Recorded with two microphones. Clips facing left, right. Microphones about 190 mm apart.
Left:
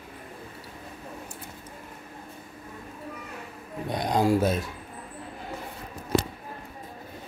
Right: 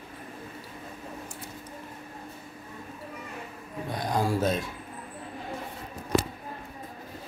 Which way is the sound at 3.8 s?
20° left (ahead or behind).